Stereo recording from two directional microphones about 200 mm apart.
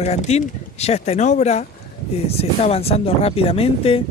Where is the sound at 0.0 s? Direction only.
35° left (ahead or behind).